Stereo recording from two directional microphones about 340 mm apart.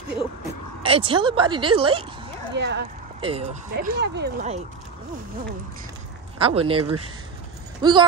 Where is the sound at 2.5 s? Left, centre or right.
Right.